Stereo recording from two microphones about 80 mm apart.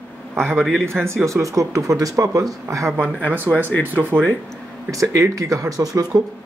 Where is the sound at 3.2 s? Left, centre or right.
Right.